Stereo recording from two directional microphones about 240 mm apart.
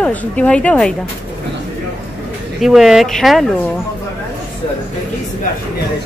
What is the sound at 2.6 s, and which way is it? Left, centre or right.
Speech, centre.